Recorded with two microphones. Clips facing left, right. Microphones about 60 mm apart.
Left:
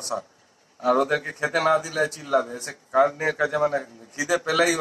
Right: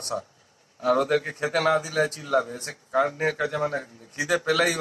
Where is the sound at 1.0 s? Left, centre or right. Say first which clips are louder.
Left 1 dB; left.